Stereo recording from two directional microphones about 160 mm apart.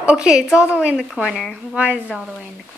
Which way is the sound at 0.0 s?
5° right (ahead or behind).